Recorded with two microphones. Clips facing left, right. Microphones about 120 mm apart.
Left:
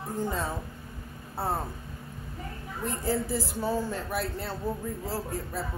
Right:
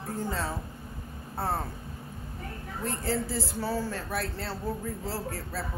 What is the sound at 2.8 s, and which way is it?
Speech, 15° left (ahead or behind).